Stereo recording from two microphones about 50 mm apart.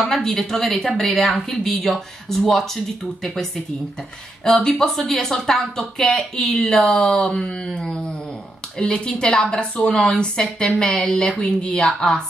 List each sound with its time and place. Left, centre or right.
0.0 s a woman's voice: centre
4.6 s a woman's voice: centre